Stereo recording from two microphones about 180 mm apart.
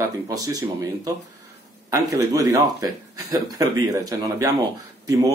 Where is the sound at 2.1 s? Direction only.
20° right (ahead or behind).